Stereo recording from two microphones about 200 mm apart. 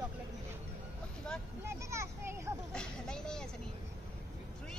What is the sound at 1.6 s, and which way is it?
Vehicle, 15° right (ahead or behind).